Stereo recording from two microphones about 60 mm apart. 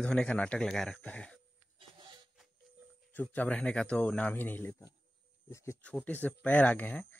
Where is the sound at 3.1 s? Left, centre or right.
Left.